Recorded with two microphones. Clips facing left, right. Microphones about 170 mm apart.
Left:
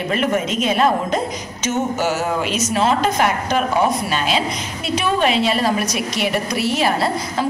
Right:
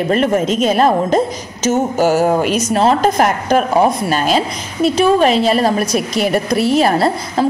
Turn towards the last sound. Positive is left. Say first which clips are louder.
# right 5 dB
turn(degrees=-35)  # may be behind; listen again after turning